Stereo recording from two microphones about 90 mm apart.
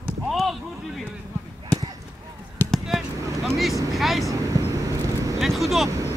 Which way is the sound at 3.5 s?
Centre (ahead or behind).